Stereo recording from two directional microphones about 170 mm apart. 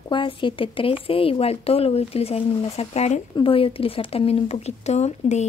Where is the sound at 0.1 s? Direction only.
30° left (ahead or behind).